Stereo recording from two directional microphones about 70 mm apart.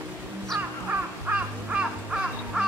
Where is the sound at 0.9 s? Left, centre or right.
Right.